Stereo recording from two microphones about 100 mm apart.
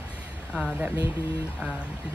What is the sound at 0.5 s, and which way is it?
Speech, 10° right (ahead or behind).